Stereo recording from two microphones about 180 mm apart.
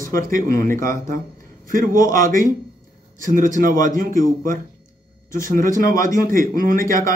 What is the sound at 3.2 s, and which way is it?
Speech, 45° right (ahead or behind).